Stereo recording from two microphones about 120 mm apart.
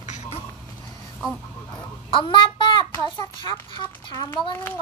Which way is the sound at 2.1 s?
45° left (ahead or behind).